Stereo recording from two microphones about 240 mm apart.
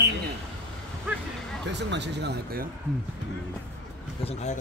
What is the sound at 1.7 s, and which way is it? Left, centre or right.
Speech, right.